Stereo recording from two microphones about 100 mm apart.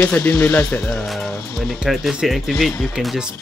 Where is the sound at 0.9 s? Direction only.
5° left (ahead or behind).